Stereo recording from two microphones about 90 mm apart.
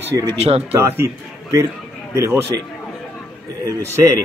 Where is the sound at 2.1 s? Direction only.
35° right (ahead or behind).